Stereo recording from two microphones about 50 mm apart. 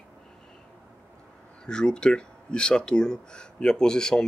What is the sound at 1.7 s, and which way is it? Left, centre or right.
Speech, centre.